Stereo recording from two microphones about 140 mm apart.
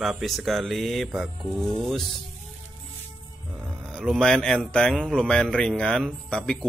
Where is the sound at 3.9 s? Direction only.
5° left (ahead or behind).